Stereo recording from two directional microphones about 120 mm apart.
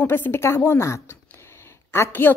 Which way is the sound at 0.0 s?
20° left (ahead or behind).